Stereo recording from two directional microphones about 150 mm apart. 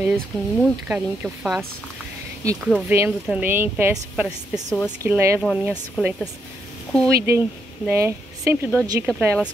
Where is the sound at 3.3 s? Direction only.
10° right (ahead or behind).